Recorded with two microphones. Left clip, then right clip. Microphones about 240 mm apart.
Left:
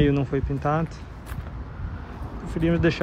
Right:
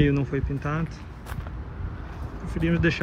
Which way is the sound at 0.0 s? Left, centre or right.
Centre.